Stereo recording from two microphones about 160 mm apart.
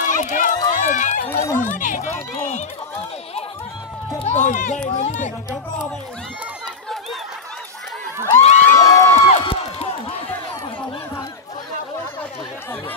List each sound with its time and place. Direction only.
0.0 s run: 55° left (ahead or behind)
1.2 s speech: 15° left (ahead or behind)
1.6 s speech: 55° left (ahead or behind)
4.2 s speech: 45° left (ahead or behind)
8.4 s crowd: 45° left (ahead or behind)
8.6 s crowd: 20° left (ahead or behind)
9.3 s a sound: 35° left (ahead or behind)